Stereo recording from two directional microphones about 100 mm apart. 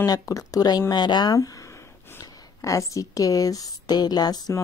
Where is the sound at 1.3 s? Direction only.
35° left (ahead or behind).